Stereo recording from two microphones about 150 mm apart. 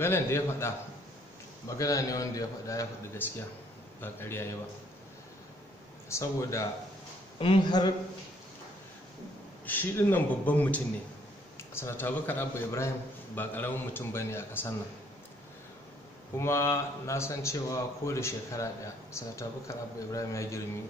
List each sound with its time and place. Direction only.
0.0 s a man's voice: 15° left (ahead or behind)
1.8 s a man's voice: 20° left (ahead or behind)
6.0 s a man's voice: 20° left (ahead or behind)
7.3 s a man's voice: 35° left (ahead or behind)
9.7 s a man's voice: 15° left (ahead or behind)
16.3 s a man's voice: 15° left (ahead or behind)